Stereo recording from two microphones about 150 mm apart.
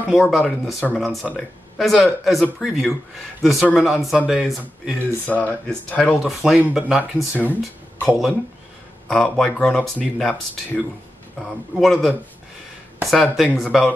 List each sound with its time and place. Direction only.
0.0 s speech: centre (ahead or behind)
4.9 s speech: 10° left (ahead or behind); by 7.1 s 5° right (ahead or behind)
7.2 s speech: 10° left (ahead or behind)
8.1 s speech: centre (ahead or behind)